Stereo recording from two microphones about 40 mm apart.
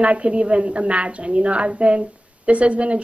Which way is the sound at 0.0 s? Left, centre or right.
Right.